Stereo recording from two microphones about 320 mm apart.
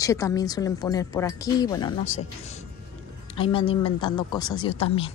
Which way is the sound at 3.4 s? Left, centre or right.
Centre.